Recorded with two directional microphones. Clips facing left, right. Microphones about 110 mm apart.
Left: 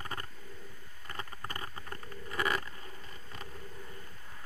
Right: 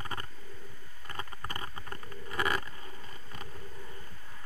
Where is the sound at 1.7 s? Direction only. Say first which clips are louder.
Right 1 dB; 25° right (ahead or behind).